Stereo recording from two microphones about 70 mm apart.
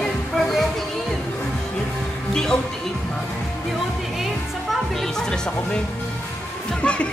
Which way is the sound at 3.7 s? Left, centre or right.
Centre.